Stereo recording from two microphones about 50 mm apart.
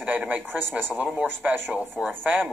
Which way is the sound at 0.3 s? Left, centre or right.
Right.